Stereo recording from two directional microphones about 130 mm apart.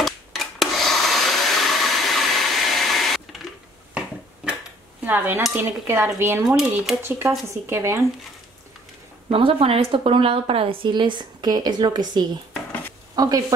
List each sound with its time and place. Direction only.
0.0 s rub: centre (ahead or behind)
5.0 s speech: 15° right (ahead or behind)
6.4 s speech: 5° right (ahead or behind)
7.0 s speech: 20° right (ahead or behind)
9.3 s a woman's voice: 45° right (ahead or behind); by 13.4 s 30° right (ahead or behind)